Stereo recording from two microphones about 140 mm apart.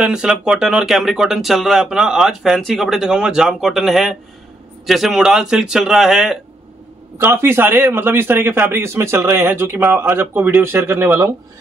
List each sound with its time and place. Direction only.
0.0 s speech: 5° right (ahead or behind)
7.2 s a man's voice: 15° right (ahead or behind)